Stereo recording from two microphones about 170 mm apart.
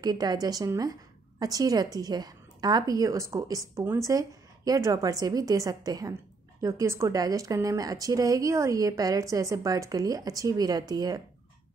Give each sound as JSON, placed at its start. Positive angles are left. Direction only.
{"t": 0.0, "sound": "a woman's voice", "side_deg": -20}